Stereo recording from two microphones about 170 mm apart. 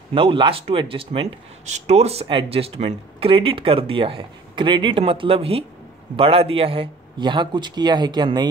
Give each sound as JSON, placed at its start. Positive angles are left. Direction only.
{"t": 0.1, "sound": "a man's voice", "side_deg": -30}